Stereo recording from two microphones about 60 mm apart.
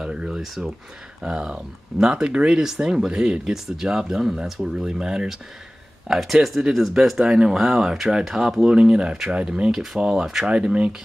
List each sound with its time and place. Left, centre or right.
0.0 s speech: centre